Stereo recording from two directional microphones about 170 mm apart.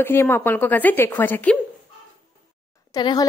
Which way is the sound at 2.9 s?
25° left (ahead or behind).